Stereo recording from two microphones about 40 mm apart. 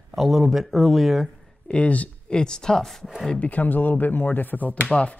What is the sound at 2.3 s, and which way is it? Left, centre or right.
Speech, centre.